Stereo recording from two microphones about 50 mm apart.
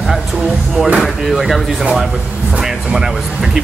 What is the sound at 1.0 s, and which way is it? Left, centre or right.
Speech, centre.